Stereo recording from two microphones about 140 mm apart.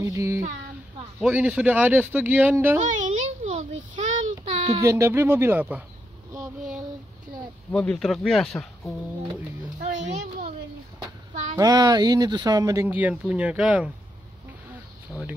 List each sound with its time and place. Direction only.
0.0 s speech: 20° right (ahead or behind)
1.2 s speech: 5° right (ahead or behind)
2.8 s child singing: 55° right (ahead or behind)
4.7 s speech: 20° right (ahead or behind)
7.7 s speech: 5° left (ahead or behind)
9.8 s music: 70° right (ahead or behind)
11.5 s speech: 25° right (ahead or behind); by 13.8 s 10° right (ahead or behind)